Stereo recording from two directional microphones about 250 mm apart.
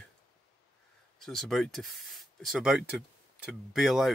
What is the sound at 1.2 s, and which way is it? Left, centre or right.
Speech, centre.